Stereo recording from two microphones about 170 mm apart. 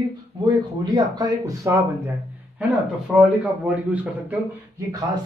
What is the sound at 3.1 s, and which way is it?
A man's voice, centre (ahead or behind).